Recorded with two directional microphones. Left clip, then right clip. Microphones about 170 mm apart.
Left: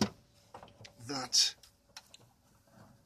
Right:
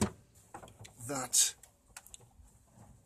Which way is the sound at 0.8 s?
20° right (ahead or behind).